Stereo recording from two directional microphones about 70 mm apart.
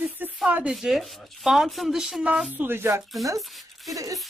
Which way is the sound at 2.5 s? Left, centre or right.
Right.